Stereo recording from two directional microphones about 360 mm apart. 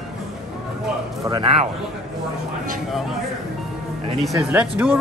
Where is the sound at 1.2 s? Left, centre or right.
Centre.